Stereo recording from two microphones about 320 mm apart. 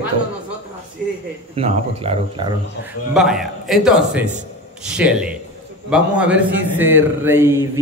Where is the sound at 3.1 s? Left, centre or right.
Centre.